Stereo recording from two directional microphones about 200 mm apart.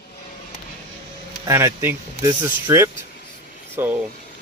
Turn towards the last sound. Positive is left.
turn(degrees=-10)  # may be behind; listen again after turning